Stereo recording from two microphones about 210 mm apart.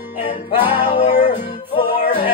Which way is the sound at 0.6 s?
20° left (ahead or behind).